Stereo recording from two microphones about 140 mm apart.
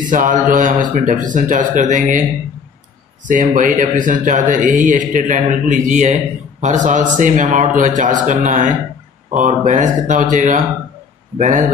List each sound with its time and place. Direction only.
0.1 s a man's voice: 70° right (ahead or behind)
3.3 s a man's voice: 70° right (ahead or behind)